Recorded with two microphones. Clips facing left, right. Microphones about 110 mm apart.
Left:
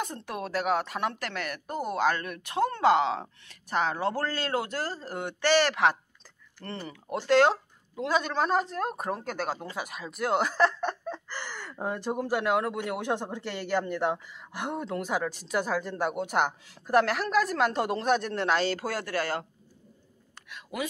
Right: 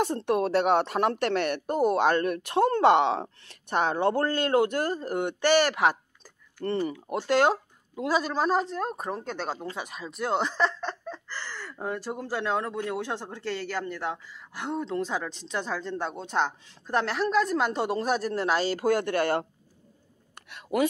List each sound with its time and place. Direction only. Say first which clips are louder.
0.0 s a woman's voice: right 9 dB; 30° right (ahead or behind); by 18.6 s 5° right (ahead or behind)
18.8 s speech: right 6 dB; 20° right (ahead or behind)
20.7 s speech: right 9 dB; 40° right (ahead or behind)